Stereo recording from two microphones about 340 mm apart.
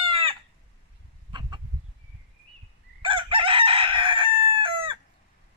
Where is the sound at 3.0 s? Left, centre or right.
Centre.